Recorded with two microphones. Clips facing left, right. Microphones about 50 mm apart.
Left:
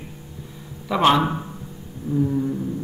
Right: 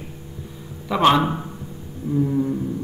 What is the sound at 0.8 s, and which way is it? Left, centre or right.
Speech, centre.